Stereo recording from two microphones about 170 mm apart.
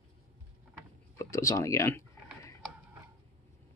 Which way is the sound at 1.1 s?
15° left (ahead or behind).